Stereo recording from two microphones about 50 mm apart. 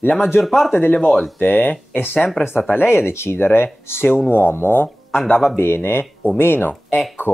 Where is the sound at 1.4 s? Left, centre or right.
Left.